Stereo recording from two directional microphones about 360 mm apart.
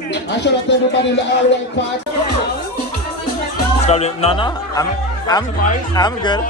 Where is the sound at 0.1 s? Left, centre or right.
Left.